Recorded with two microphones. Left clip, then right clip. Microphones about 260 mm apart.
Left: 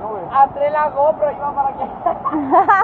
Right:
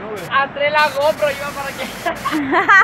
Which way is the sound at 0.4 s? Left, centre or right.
Right.